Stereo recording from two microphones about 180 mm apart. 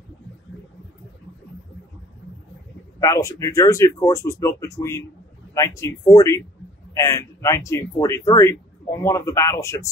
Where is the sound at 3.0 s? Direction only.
20° left (ahead or behind).